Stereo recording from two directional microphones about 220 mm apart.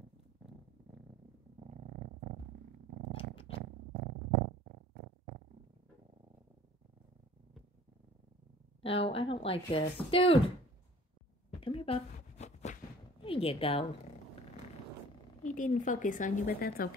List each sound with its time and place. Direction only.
3.1 s purr: 25° left (ahead or behind)
3.9 s purr: 50° right (ahead or behind)
8.8 s speech: 25° left (ahead or behind)
11.6 s a sound: 25° left (ahead or behind)
13.2 s a woman's voice: 25° left (ahead or behind)
15.4 s a woman's voice: 35° left (ahead or behind)